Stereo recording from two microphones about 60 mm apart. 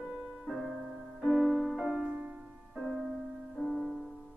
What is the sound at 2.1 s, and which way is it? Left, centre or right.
Music, right.